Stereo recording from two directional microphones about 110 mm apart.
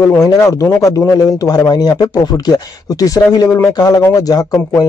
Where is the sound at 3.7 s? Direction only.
35° left (ahead or behind).